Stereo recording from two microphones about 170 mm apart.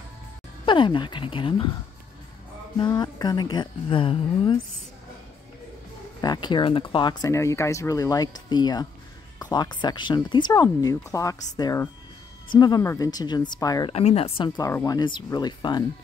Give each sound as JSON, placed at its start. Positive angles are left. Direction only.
{"t": 0.7, "sound": "speech", "side_deg": 30}
{"t": 2.8, "sound": "speech", "side_deg": 25}
{"t": 6.2, "sound": "speech", "side_deg": 25}
{"t": 13.9, "sound": "speech", "side_deg": 35}
{"t": 14.7, "sound": "speech", "side_deg": 20}